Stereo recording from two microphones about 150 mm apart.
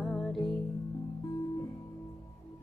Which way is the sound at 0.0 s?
Centre (ahead or behind).